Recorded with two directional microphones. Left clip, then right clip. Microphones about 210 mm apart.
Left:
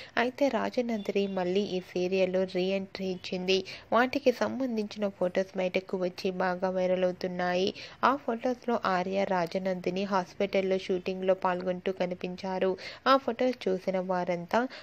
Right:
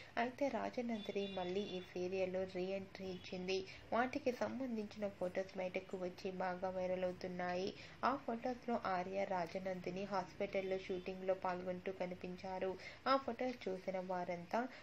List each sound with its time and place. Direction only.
0.1 s a woman's voice: 40° left (ahead or behind)